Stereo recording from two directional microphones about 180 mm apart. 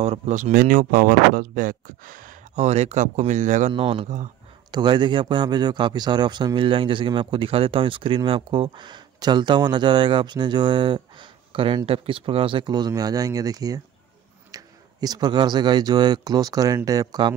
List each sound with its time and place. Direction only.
0.0 s speech: 40° right (ahead or behind)
3.7 s a man's voice: 30° right (ahead or behind)